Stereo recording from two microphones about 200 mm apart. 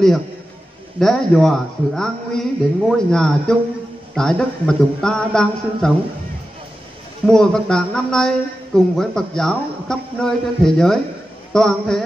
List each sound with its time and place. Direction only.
0.9 s a man's voice: centre (ahead or behind)
7.2 s a man's voice: 5° left (ahead or behind)